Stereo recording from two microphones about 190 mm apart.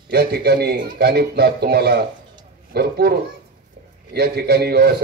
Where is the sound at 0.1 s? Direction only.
55° right (ahead or behind).